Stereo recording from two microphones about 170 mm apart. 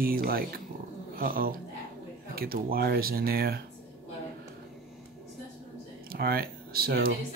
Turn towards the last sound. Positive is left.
turn(degrees=-65)  # may be behind; listen again after turning